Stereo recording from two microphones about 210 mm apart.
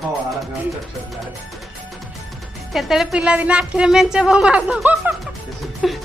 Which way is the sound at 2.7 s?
Centre (ahead or behind).